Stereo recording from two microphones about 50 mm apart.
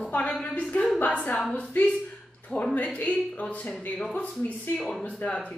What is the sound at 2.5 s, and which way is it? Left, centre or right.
Speech, centre.